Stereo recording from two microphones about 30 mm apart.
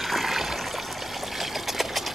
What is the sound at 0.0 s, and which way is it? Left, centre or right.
Water, centre.